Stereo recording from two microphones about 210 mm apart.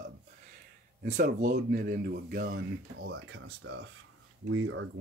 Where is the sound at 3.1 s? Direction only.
70° right (ahead or behind).